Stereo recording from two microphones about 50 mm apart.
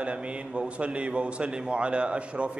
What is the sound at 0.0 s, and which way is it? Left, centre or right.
A man's voice, right.